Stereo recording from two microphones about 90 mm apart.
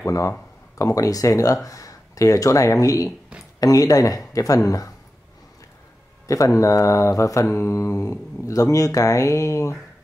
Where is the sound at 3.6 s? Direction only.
40° left (ahead or behind).